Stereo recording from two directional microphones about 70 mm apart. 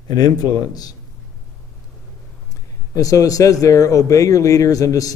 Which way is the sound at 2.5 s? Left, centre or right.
Left.